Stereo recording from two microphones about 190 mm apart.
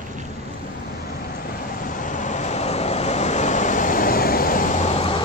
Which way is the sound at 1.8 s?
45° left (ahead or behind).